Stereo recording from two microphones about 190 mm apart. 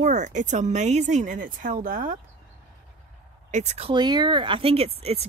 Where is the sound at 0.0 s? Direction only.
40° right (ahead or behind).